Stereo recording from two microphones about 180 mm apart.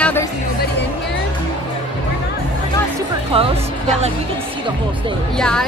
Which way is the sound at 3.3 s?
30° right (ahead or behind).